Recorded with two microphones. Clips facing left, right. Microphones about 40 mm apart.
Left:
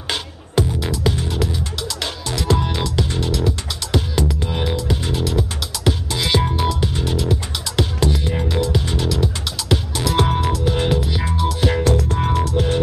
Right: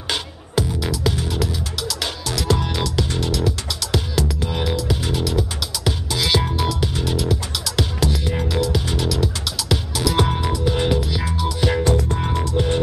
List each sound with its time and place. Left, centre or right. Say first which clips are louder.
0.8 s music: left 1 dB; centre
5.4 s music: left 1 dB; centre
11.1 s music: left 1 dB; centre
11.6 s music: even; centre